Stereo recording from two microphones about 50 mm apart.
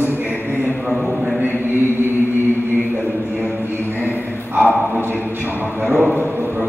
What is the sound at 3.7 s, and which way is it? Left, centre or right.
Music, right.